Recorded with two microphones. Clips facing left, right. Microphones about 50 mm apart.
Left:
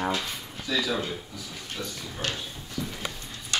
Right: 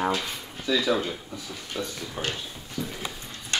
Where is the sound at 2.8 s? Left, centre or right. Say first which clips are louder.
Right 1 dB; centre.